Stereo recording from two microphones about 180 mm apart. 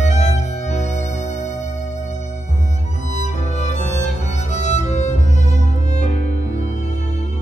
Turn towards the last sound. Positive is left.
turn(degrees=40)  # may be behind; listen again after turning